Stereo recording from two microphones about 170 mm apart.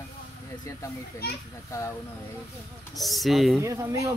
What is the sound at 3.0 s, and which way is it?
Speech, centre (ahead or behind).